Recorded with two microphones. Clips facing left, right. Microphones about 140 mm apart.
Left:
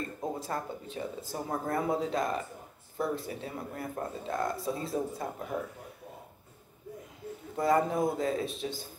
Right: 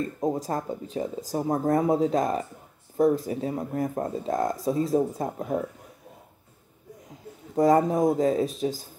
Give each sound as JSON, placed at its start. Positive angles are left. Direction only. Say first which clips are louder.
{"t": 0.3, "sound": "speech", "louder": "right 7 dB", "side_deg": -40}
{"t": 7.5, "sound": "speech", "louder": "right 7 dB", "side_deg": -40}